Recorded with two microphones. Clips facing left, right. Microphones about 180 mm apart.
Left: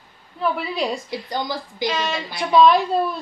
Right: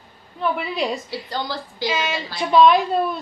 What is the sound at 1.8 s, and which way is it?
Speech, 5° right (ahead or behind).